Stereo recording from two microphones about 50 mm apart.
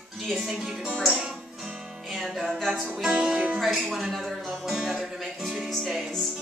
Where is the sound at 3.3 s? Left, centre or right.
Right.